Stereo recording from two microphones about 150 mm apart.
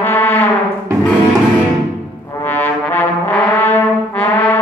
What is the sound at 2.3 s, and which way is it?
Brass instrument, 15° left (ahead or behind).